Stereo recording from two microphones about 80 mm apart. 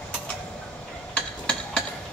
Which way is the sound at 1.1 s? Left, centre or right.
Centre.